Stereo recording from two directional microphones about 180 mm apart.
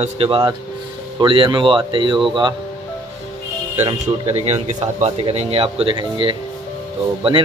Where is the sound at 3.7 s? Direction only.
35° right (ahead or behind).